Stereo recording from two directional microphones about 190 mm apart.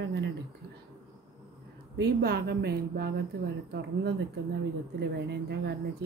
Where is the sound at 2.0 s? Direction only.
55° right (ahead or behind).